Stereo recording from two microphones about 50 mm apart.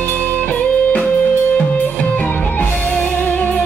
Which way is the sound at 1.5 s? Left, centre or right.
Left.